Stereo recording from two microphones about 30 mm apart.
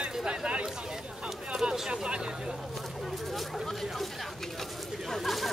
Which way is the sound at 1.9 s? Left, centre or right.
Right.